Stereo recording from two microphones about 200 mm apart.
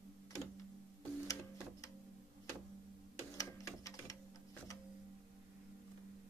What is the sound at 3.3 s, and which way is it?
Printer, 15° left (ahead or behind).